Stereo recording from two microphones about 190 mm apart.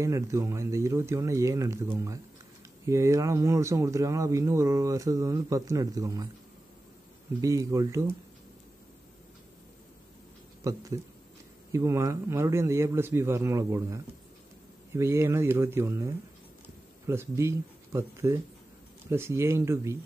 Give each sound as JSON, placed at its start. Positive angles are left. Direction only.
{"t": 0.0, "sound": "speech", "side_deg": -15}
{"t": 7.4, "sound": "speech", "side_deg": -15}
{"t": 10.6, "sound": "speech", "side_deg": -15}